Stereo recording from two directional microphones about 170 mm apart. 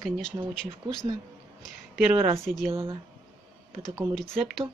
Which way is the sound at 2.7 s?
30° right (ahead or behind).